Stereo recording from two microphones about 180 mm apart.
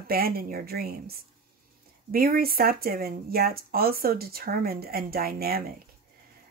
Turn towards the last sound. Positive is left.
turn(degrees=-55)  # may be behind; listen again after turning